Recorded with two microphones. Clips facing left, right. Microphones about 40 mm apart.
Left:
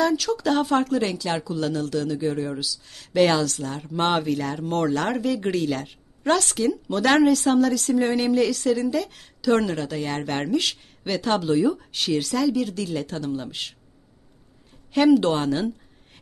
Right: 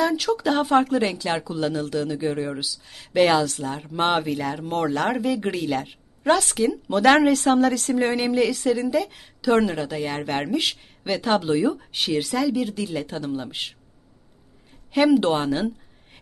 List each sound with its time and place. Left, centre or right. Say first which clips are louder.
0.0 s speech: even; centre
7.2 s speech: right 1 dB; right
14.9 s a woman's voice: even; centre